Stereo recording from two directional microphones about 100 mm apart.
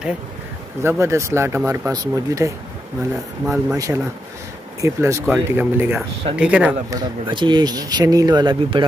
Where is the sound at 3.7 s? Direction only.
30° right (ahead or behind); by 6.7 s 10° right (ahead or behind).